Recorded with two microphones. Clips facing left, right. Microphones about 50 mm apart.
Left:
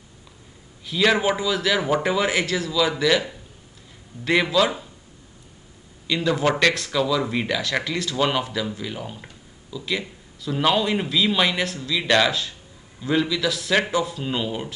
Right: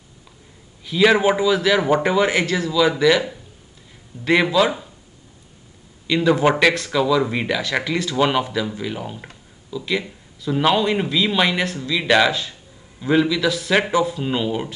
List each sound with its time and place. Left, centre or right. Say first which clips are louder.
0.8 s a man's voice: right 4 dB; centre
6.0 s speech: right 5 dB; centre
6.7 s a man's voice: right 4 dB; centre